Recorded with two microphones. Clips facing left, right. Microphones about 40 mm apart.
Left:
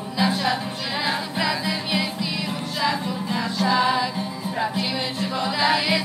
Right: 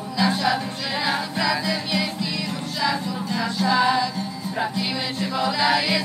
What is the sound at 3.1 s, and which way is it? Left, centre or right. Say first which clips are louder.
Music: even; centre.